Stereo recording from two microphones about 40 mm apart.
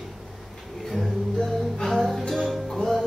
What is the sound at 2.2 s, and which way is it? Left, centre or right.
Music, centre.